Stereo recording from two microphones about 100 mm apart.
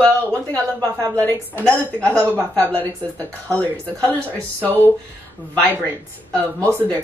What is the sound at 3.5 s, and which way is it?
Speech, 15° left (ahead or behind).